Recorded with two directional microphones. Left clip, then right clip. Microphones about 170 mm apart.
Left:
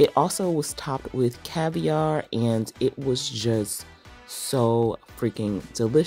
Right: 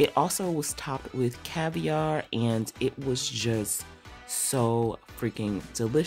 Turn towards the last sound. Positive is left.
turn(degrees=20)  # may be behind; listen again after turning